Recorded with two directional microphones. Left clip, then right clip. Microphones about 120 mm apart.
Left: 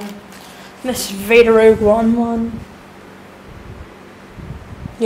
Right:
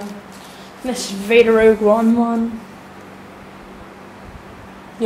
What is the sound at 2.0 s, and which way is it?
Speech, 10° right (ahead or behind).